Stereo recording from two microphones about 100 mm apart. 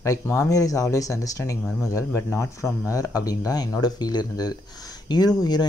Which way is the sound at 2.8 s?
35° left (ahead or behind).